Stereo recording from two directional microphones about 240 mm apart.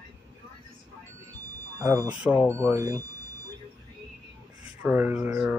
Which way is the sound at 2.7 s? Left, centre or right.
Centre.